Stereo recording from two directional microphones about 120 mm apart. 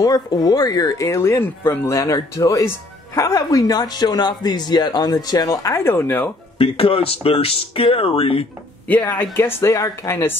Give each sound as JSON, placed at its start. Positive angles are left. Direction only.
{"t": 0.0, "sound": "speech", "side_deg": 30}
{"t": 6.6, "sound": "speech", "side_deg": 50}
{"t": 8.8, "sound": "speech", "side_deg": 15}